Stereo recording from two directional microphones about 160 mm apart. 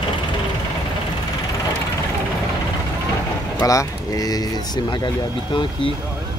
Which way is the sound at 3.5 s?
20° left (ahead or behind).